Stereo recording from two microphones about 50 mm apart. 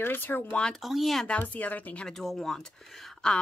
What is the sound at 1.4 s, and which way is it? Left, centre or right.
Speech, left.